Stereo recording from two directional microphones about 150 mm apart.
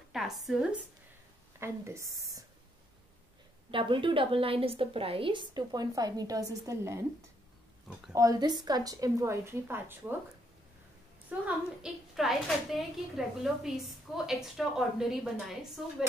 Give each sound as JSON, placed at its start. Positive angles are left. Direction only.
{"t": 0.1, "sound": "a woman's voice", "side_deg": 0}
{"t": 1.6, "sound": "a woman's voice", "side_deg": -20}
{"t": 3.7, "sound": "a woman's voice", "side_deg": -35}
{"t": 8.1, "sound": "a woman's voice", "side_deg": -25}
{"t": 11.2, "sound": "a woman's voice", "side_deg": -5}